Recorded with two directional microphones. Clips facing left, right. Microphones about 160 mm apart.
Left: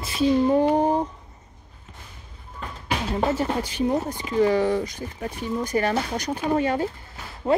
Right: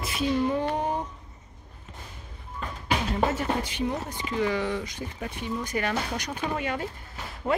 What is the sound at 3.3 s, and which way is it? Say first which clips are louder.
Speech: left 3 dB; 35° left (ahead or behind).